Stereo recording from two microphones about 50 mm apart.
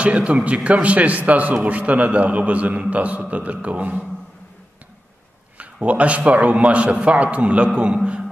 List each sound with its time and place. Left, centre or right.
0.0 s a man's voice: right
5.6 s a man's voice: right